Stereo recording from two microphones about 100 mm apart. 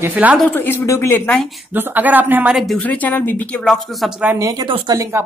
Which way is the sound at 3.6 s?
Centre (ahead or behind).